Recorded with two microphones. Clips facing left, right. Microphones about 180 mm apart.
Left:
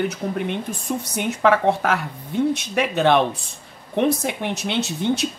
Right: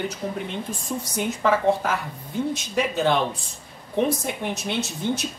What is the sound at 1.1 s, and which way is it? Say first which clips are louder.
Speech: left 3 dB; 65° left (ahead or behind).